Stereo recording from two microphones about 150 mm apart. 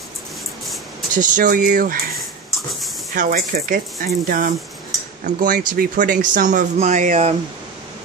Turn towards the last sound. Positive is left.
turn(degrees=-50)  # may be behind; listen again after turning